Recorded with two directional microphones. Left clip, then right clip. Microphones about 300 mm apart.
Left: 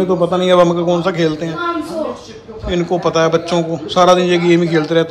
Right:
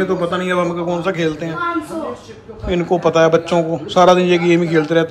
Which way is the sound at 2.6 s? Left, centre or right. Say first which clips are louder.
Even; centre.